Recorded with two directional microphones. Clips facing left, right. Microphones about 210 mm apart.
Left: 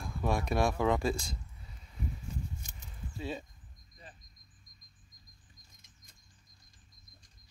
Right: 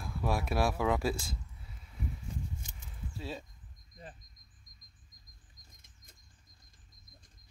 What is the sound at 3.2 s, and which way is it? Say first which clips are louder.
Speech: left 3 dB; centre (ahead or behind).